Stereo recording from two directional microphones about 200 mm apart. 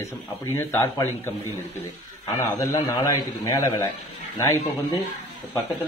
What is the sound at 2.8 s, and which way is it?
A man's voice, 20° left (ahead or behind).